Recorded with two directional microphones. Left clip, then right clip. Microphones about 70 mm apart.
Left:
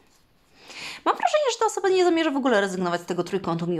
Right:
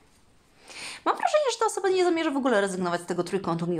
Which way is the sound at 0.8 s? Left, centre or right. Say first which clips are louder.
Left 3 dB; left.